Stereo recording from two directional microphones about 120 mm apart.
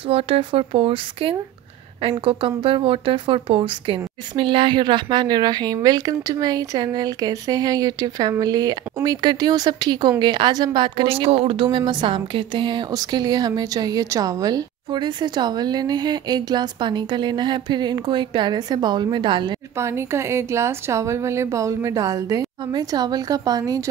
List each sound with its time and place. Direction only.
0.1 s speech: 50° right (ahead or behind)
19.8 s a woman's voice: 20° right (ahead or behind)